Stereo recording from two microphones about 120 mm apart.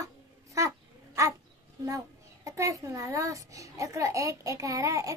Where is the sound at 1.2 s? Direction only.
25° right (ahead or behind).